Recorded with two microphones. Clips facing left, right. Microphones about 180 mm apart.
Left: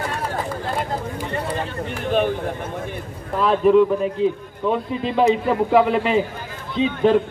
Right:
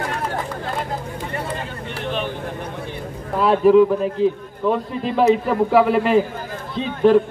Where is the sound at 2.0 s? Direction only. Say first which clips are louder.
Left 6 dB; 45° left (ahead or behind).